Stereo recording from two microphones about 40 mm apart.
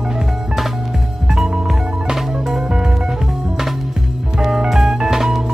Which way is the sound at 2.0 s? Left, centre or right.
Centre.